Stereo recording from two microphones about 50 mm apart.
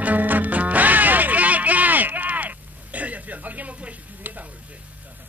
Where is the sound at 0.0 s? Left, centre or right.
Right.